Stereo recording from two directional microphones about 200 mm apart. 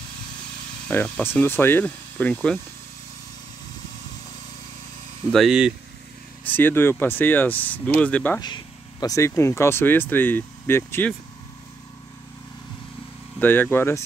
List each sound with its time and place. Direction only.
0.8 s speech: 5° left (ahead or behind)
5.3 s speech: centre (ahead or behind)
6.4 s speech: 10° left (ahead or behind)
8.4 s speech: 20° left (ahead or behind)
13.4 s speech: 10° left (ahead or behind)